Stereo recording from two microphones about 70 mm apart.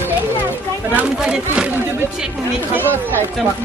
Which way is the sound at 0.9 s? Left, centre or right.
Centre.